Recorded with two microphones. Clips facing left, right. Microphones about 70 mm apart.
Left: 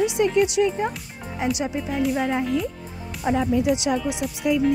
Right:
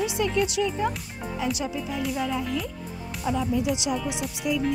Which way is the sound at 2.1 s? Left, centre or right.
Left.